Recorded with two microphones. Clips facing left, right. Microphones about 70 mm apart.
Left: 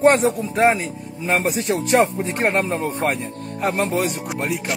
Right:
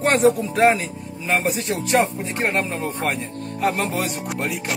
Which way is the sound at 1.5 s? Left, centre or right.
Left.